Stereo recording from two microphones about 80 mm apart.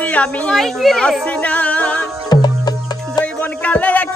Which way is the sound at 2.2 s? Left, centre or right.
Left.